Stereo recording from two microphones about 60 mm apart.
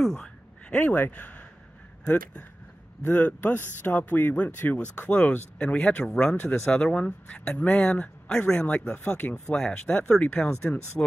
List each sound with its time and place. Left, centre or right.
0.0 s a sound: centre
0.7 s speech: left
3.0 s speech: left